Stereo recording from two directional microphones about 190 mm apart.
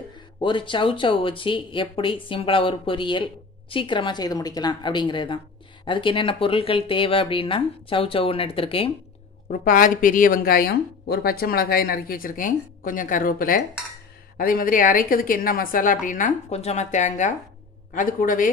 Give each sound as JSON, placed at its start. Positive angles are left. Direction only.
{"t": 0.4, "sound": "speech", "side_deg": 25}
{"t": 9.5, "sound": "speech", "side_deg": 45}